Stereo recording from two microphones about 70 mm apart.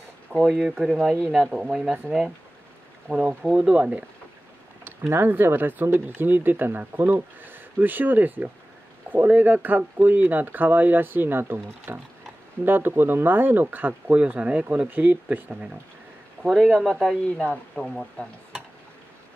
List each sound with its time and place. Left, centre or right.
0.3 s speech: centre
0.7 s speech: centre
3.1 s speech: right
3.4 s speech: centre
4.8 s speech: right
16.7 s speech: centre